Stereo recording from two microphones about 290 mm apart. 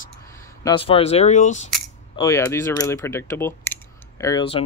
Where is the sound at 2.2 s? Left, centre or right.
Centre.